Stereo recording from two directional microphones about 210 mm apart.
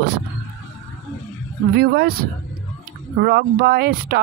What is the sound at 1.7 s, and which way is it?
Speech, 50° right (ahead or behind).